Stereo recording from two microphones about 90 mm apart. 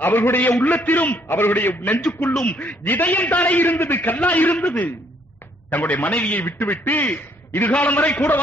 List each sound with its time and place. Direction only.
0.0 s a man's voice: 25° left (ahead or behind)
2.0 s a man's voice: 10° left (ahead or behind)